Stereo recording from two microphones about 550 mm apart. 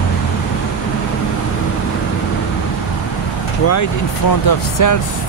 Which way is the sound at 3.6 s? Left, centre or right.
Left.